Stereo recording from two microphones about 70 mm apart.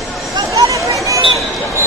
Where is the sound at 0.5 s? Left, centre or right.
Right.